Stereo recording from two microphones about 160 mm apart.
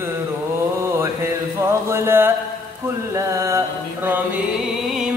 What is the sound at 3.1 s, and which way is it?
Mantra, 20° right (ahead or behind).